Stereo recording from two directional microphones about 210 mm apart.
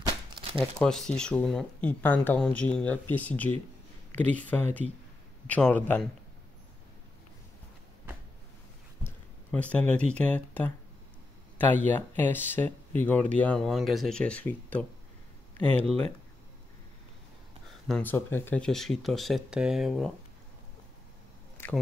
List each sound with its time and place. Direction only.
0.0 s crumpling: 25° right (ahead or behind)
0.6 s speech: 5° left (ahead or behind)
9.0 s speech: 5° left (ahead or behind)
17.8 s speech: 5° left (ahead or behind)
21.6 s a sound: 10° left (ahead or behind)